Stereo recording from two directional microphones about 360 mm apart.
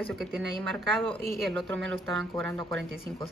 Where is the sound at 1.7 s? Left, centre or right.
Right.